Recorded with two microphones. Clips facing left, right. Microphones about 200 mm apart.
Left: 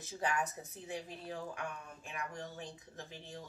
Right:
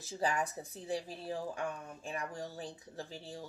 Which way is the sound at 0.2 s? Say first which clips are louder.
Right 2 dB; 30° right (ahead or behind).